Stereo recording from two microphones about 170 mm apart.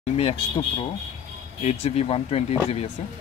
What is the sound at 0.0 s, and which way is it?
Speech, 35° left (ahead or behind).